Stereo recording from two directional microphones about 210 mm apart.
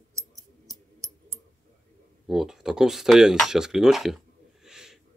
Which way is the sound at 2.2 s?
Centre (ahead or behind).